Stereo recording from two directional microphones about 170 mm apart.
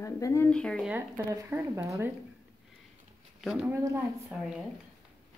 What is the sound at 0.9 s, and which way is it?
Speech, 15° right (ahead or behind).